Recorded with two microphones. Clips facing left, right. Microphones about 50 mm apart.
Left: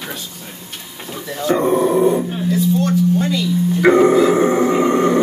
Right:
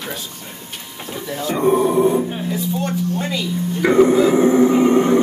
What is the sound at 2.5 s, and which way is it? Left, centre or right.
Speech, centre.